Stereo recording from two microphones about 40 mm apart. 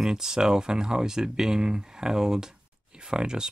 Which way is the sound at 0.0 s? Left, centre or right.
Centre.